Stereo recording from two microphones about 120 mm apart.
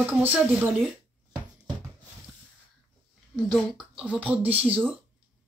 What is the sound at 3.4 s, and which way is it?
Speech, 5° right (ahead or behind).